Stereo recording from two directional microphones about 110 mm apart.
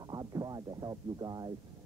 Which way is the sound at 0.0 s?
40° right (ahead or behind).